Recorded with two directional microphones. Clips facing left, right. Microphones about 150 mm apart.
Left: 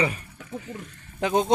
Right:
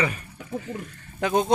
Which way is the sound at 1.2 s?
20° left (ahead or behind).